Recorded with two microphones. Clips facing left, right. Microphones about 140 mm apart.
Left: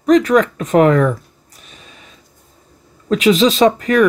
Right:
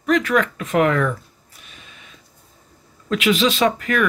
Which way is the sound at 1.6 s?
35° left (ahead or behind).